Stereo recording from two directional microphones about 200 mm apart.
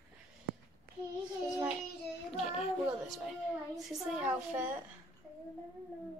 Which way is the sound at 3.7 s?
Centre (ahead or behind).